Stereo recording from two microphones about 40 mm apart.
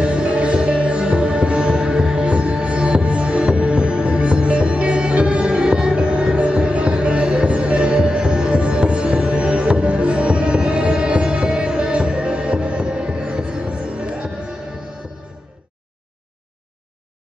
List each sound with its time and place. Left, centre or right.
0.0 s music: right